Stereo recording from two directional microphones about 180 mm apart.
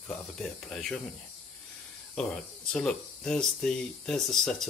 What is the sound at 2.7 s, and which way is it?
Speech, 5° left (ahead or behind).